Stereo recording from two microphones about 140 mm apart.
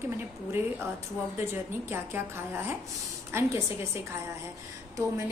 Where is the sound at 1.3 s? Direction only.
15° right (ahead or behind).